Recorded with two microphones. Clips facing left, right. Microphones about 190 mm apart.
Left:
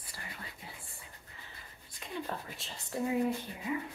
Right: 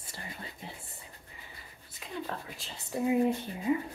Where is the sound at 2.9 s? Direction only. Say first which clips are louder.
Right 4 dB; 20° right (ahead or behind).